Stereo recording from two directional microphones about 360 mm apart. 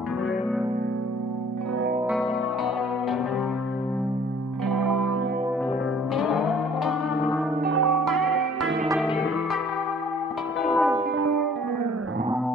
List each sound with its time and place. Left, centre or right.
4.6 s music: right
6.1 s music: centre
7.7 s music: right
8.0 s music: right
10.6 s music: centre
11.1 s music: right